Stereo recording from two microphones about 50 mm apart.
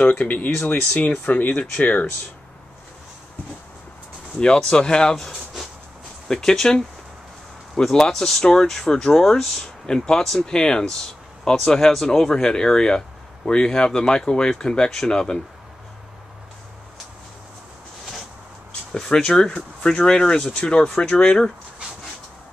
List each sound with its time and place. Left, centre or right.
0.0 s speech: left
4.4 s speech: centre
5.1 s speech: centre
18.9 s speech: centre